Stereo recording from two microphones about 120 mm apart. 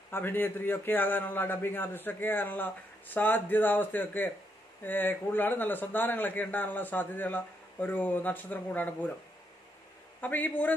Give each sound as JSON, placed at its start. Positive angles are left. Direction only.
{"t": 0.1, "sound": "a man's voice", "side_deg": 20}
{"t": 10.2, "sound": "a man's voice", "side_deg": 15}